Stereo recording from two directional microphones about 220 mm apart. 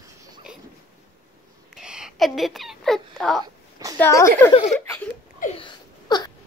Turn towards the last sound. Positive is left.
turn(degrees=20)  # may be behind; listen again after turning